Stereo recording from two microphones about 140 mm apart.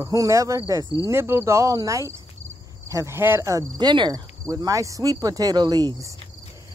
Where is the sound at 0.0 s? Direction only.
25° right (ahead or behind).